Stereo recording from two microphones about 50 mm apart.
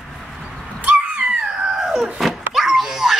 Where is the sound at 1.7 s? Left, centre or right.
Centre.